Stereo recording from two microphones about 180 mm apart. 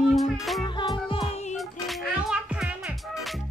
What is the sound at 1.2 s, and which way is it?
Music, centre (ahead or behind).